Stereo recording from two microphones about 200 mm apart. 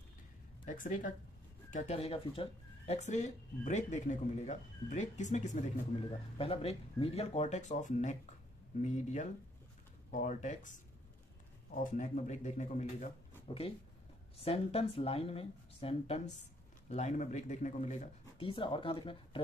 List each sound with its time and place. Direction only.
0.7 s speech: 40° left (ahead or behind)
11.8 s speech: 35° left (ahead or behind)